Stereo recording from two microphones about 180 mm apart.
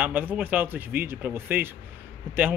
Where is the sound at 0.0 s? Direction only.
10° right (ahead or behind).